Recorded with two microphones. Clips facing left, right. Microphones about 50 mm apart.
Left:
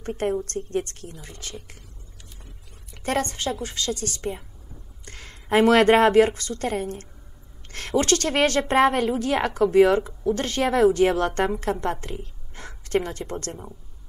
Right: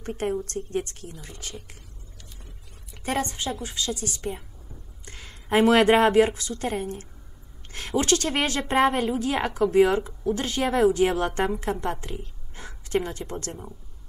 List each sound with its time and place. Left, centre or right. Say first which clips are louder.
0.0 s a woman's voice: left 2 dB; left
2.9 s a sound: left 2 dB; left
3.3 s a woman's voice: left 2 dB; left
5.0 s a woman's voice: left 1 dB; left
11.1 s a woman's voice: left 2 dB; right
11.7 s a woman's voice: left 2 dB; left
12.5 s a sound: left 2 dB; left
13.2 s a woman's voice: left 2 dB; left